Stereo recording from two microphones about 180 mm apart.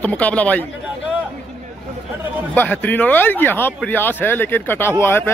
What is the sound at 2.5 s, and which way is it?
Speech, 10° left (ahead or behind).